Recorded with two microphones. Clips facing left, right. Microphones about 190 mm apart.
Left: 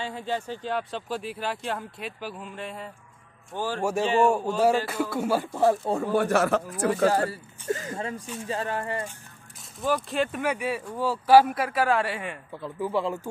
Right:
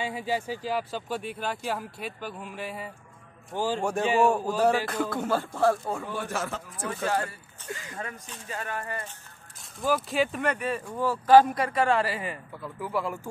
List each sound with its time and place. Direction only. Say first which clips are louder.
0.0 s a man's voice: right 1 dB; 10° right (ahead or behind)
4.3 s speech: left 1 dB; 5° left (ahead or behind)
6.1 s speech: left 10 dB; 65° left (ahead or behind)
7.1 s speech: left 5 dB; 35° left (ahead or behind)
7.9 s speech: left 6 dB; 25° left (ahead or behind)
9.8 s speech: even; centre (ahead or behind)
12.6 s speech: left 4 dB; 25° left (ahead or behind)